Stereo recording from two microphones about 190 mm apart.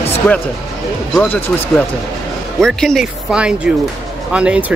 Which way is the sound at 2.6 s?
5° left (ahead or behind).